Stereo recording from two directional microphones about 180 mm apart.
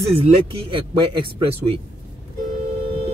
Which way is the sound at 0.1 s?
35° right (ahead or behind).